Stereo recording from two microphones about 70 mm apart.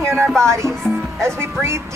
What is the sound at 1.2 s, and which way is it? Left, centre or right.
Speech, right.